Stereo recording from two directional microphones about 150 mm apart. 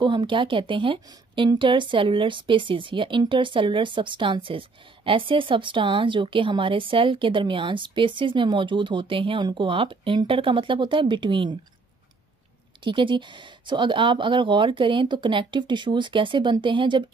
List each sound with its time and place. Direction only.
0.0 s a woman's voice: 30° right (ahead or behind)
12.8 s a woman's voice: 35° right (ahead or behind)